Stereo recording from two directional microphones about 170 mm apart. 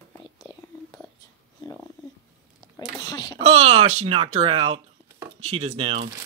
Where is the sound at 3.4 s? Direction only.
35° right (ahead or behind).